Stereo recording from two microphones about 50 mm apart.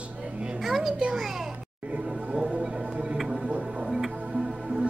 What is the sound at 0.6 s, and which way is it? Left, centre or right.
Speech, centre.